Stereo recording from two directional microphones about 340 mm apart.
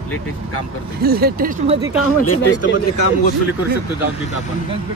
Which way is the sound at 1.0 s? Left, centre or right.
Right.